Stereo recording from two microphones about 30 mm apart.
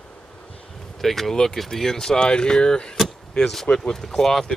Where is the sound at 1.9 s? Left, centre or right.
Centre.